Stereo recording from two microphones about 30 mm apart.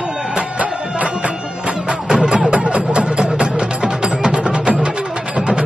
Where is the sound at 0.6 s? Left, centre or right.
Right.